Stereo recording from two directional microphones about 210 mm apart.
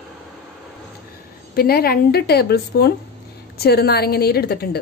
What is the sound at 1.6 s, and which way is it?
A woman's voice, 45° left (ahead or behind).